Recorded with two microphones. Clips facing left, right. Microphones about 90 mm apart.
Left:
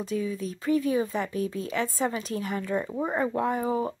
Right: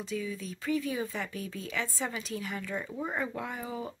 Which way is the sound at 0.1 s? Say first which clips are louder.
Left 5 dB; 35° left (ahead or behind).